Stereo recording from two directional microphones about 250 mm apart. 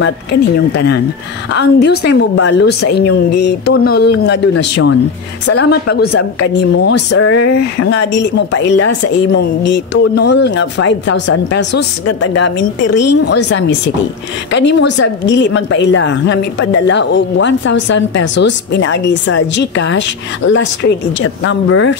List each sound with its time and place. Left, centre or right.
0.0 s a woman's voice: left
8.7 s speech: left
9.3 s a woman's voice: left
12.8 s speech: left
13.5 s a woman's voice: left